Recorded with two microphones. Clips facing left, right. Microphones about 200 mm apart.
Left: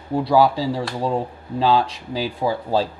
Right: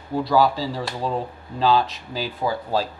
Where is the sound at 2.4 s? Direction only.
25° left (ahead or behind).